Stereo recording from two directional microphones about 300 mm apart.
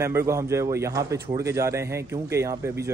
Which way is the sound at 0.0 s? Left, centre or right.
Centre.